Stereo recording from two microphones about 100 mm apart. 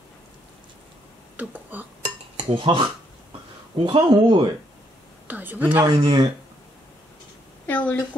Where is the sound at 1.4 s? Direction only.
15° right (ahead or behind).